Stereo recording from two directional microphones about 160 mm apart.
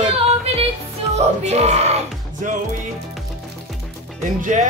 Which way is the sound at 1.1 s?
45° right (ahead or behind).